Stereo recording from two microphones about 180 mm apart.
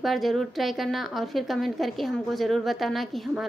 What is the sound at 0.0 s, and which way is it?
A woman's voice, centre (ahead or behind).